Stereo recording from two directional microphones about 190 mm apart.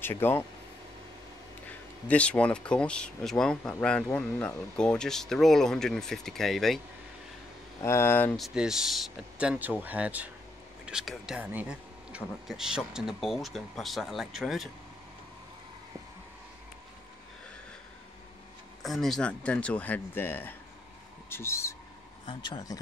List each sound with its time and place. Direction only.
0.0 s speech: 10° left (ahead or behind)
1.7 s speech: 5° left (ahead or behind)
7.8 s speech: 15° left (ahead or behind)
8.5 s speech: 5° right (ahead or behind)
18.8 s speech: centre (ahead or behind)
22.2 s speech: 25° left (ahead or behind)